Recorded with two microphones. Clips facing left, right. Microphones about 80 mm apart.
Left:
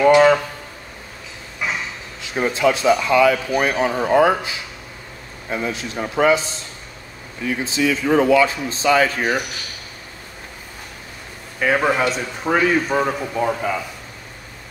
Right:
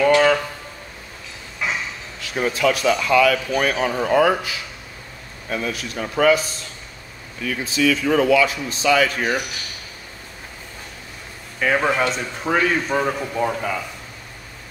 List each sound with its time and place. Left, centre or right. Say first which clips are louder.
0.0 s a sound: left 3 dB; centre
2.2 s speech: left 2 dB; left
11.6 s a man's voice: left 1 dB; centre